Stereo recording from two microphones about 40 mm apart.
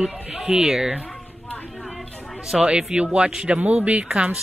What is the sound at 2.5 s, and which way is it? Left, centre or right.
Speech, centre.